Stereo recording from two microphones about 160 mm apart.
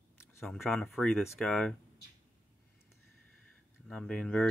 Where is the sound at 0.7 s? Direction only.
Centre (ahead or behind).